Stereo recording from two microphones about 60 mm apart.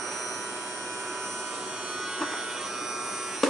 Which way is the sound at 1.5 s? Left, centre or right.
Centre.